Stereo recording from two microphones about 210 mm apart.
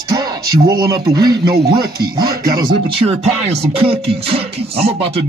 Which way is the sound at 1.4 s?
50° right (ahead or behind).